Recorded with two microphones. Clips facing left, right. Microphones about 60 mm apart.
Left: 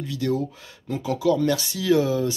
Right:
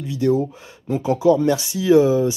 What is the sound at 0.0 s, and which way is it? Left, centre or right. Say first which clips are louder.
Speech: right 6 dB; right.